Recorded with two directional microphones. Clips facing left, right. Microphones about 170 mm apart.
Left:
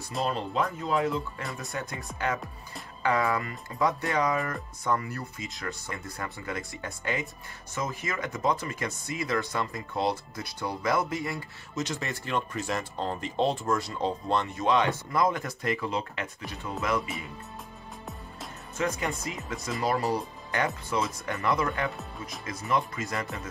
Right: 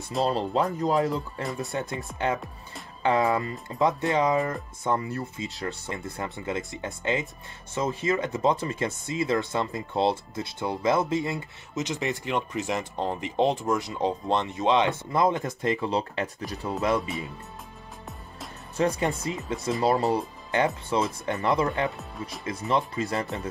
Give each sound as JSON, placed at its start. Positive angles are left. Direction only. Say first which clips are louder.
{"t": 0.2, "sound": "speech", "louder": "right 4 dB", "side_deg": -35}
{"t": 1.6, "sound": "speech", "louder": "right 5 dB", "side_deg": -20}
{"t": 18.8, "sound": "speech", "louder": "right 5 dB", "side_deg": -35}
{"t": 19.8, "sound": "speech", "louder": "right 4 dB", "side_deg": -25}